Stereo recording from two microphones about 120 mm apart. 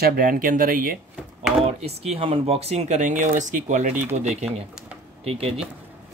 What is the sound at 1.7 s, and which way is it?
Speech, 60° right (ahead or behind).